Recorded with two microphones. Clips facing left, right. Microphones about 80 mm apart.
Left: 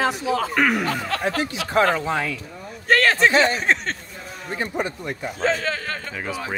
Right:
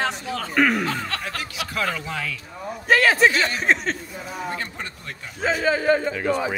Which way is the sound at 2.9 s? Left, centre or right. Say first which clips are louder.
Even; centre.